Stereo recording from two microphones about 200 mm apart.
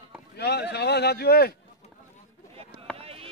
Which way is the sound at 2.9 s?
30° right (ahead or behind).